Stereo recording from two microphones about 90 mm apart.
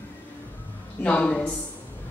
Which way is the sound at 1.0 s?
15° left (ahead or behind).